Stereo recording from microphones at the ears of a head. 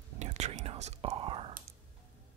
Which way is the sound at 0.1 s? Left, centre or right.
Right.